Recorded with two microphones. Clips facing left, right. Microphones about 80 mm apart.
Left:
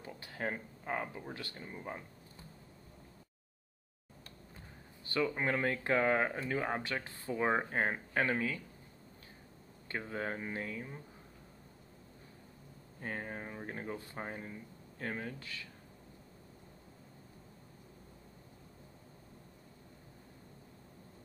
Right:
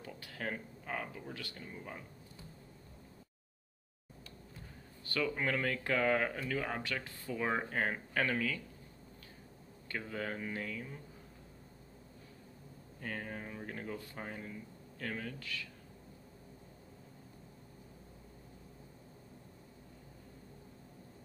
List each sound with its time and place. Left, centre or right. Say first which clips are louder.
0.0 s speech: left 2 dB; left
5.0 s speech: left 2 dB; left
9.8 s speech: left 1 dB; left
13.0 s speech: left 1 dB; left